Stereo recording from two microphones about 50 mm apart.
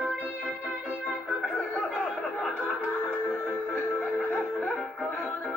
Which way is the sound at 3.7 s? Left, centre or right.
Left.